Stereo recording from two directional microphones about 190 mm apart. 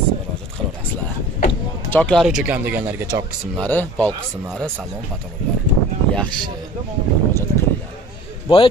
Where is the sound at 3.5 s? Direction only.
5° left (ahead or behind).